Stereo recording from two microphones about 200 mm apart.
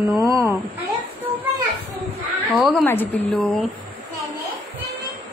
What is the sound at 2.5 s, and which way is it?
Speech, centre (ahead or behind).